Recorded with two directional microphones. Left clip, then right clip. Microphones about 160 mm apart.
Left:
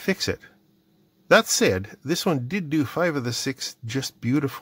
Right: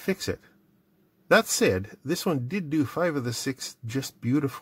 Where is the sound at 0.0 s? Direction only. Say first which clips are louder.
Left 4 dB; 20° left (ahead or behind).